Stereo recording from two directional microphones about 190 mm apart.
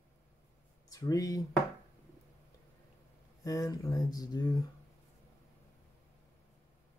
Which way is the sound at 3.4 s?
20° left (ahead or behind).